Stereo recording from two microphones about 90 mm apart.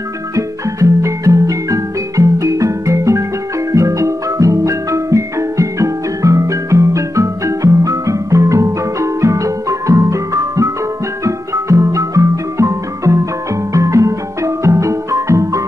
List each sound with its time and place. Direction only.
0.4 s music: 35° right (ahead or behind)